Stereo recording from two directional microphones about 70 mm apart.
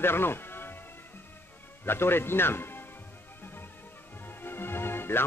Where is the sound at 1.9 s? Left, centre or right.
Left.